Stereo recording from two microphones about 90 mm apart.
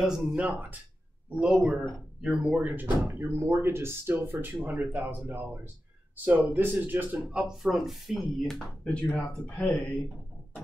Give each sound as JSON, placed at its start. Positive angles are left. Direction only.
{"t": 0.0, "sound": "speech", "side_deg": 0}
{"t": 0.4, "sound": "speech", "side_deg": -15}
{"t": 1.3, "sound": "speech", "side_deg": -5}
{"t": 7.2, "sound": "speech", "side_deg": -10}